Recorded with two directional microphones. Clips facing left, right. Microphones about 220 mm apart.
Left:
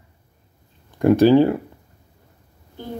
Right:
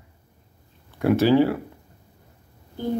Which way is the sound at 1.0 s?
15° left (ahead or behind).